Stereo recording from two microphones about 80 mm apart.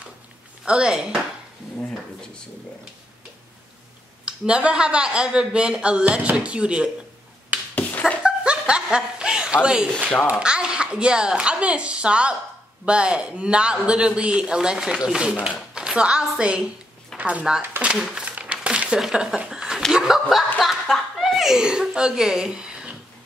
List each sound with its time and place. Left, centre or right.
0.7 s speech: centre
4.2 s speech: centre
8.2 s snicker: centre
10.4 s a woman's voice: centre
17.8 s speech: centre
18.2 s a sound: centre
19.9 s speech: centre